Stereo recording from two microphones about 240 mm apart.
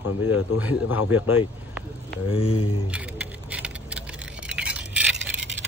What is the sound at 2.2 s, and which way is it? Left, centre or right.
Speech, left.